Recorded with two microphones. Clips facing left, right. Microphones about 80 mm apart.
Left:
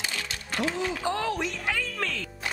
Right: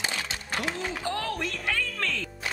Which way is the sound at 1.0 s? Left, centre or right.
Centre.